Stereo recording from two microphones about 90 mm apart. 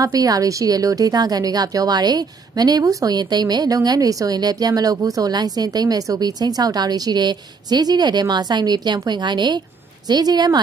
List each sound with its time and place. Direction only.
0.0 s speech: 45° right (ahead or behind)